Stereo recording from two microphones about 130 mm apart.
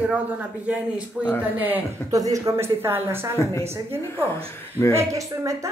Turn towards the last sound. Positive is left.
turn(degrees=-25)  # may be behind; listen again after turning